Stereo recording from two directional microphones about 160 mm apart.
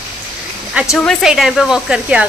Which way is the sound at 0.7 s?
5° right (ahead or behind).